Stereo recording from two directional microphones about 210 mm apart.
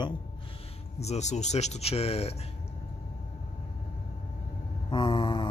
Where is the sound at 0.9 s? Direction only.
30° left (ahead or behind).